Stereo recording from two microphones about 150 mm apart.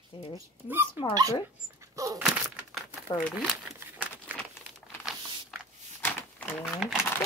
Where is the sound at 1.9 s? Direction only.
20° right (ahead or behind).